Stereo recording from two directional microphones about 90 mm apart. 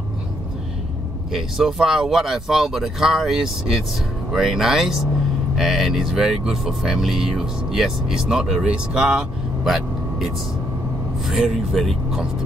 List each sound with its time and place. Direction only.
1.3 s speech: 5° right (ahead or behind)
9.7 s vehicle: centre (ahead or behind)
11.2 s speech: centre (ahead or behind)